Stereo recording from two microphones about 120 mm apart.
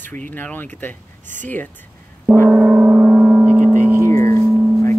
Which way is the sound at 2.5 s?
10° right (ahead or behind).